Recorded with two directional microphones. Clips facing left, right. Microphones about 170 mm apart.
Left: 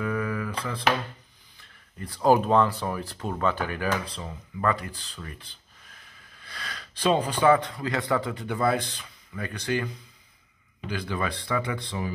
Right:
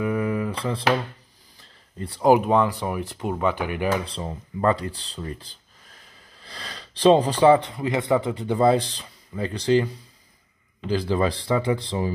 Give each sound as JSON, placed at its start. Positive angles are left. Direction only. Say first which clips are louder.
{"t": 0.0, "sound": "a sound", "louder": "right 5 dB", "side_deg": -20}
{"t": 2.3, "sound": "speech", "louder": "right 2 dB", "side_deg": -15}
{"t": 10.9, "sound": "speech", "louder": "right 8 dB", "side_deg": -30}